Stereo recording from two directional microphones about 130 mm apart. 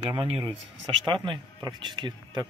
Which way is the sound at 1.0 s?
35° right (ahead or behind).